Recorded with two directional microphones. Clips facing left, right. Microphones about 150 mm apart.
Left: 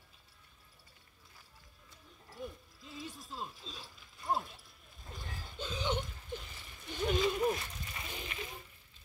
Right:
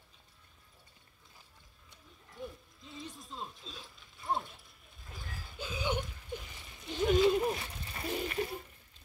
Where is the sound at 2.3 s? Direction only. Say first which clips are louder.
Even; centre (ahead or behind); by 7.0 s 20° right (ahead or behind).